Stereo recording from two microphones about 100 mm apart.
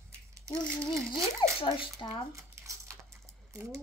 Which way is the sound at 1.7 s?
50° left (ahead or behind).